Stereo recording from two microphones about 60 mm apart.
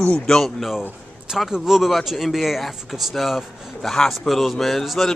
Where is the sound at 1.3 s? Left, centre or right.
Centre.